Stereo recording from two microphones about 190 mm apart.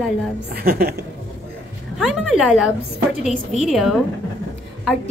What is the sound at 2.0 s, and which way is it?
A woman's voice, 5° right (ahead or behind).